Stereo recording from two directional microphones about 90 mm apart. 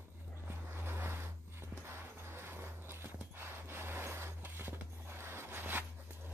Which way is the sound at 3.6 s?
25° right (ahead or behind).